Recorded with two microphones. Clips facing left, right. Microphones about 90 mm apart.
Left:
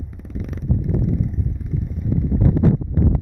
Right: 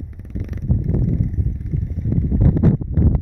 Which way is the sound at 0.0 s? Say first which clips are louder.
Left 1 dB; centre (ahead or behind).